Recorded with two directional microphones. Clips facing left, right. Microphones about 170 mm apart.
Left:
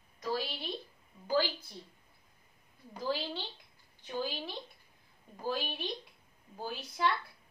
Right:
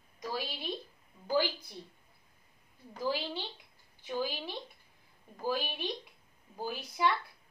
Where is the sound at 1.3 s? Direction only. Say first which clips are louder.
Even; 15° right (ahead or behind).